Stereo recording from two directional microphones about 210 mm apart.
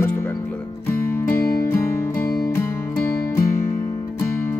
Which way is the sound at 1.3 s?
45° left (ahead or behind).